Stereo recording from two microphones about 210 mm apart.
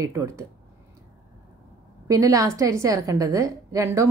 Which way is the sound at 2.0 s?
15° right (ahead or behind).